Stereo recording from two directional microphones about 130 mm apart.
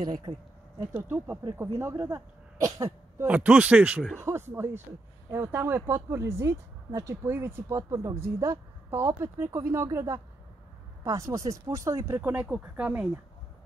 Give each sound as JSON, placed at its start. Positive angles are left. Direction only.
{"t": 0.0, "sound": "speech", "side_deg": -30}
{"t": 1.1, "sound": "speech", "side_deg": -15}
{"t": 3.3, "sound": "speech", "side_deg": -10}